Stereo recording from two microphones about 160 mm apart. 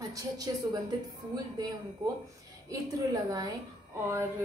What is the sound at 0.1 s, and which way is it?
Speech, 20° right (ahead or behind).